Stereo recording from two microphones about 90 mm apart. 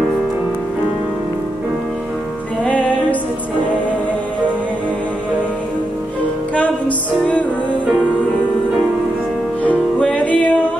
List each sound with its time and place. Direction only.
2.6 s music: 15° left (ahead or behind)
9.6 s music: 15° left (ahead or behind)